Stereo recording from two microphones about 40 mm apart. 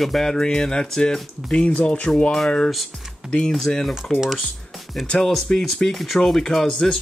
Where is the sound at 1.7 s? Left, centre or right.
Left.